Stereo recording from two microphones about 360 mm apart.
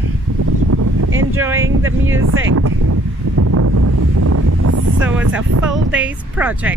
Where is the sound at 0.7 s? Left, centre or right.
Right.